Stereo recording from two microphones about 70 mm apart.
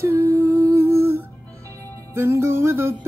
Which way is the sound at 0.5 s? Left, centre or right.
Right.